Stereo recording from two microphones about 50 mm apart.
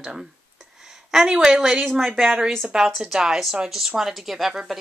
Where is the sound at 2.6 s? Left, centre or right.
Centre.